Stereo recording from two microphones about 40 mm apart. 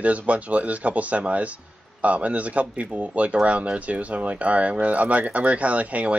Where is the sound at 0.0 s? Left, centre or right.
Right.